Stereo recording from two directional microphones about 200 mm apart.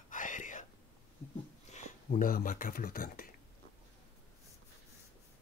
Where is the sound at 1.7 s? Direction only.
40° left (ahead or behind).